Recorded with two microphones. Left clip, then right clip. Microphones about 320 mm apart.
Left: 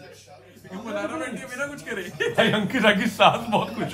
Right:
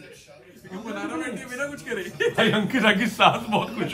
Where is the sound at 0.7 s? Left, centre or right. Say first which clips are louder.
Left 2 dB; centre.